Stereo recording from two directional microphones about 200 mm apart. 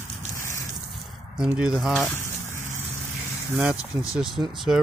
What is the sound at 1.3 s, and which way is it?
Speech, 5° right (ahead or behind).